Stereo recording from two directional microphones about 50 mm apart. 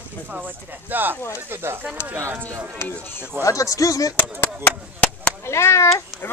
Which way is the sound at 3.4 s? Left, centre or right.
Left.